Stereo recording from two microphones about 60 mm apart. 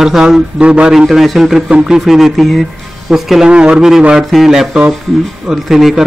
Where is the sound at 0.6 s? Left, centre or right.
Centre.